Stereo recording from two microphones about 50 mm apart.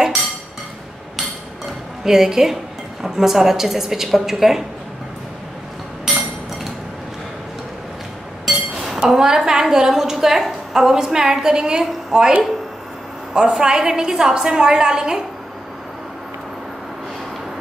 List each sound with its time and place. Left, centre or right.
2.0 s a woman's voice: centre
8.5 s a woman's voice: centre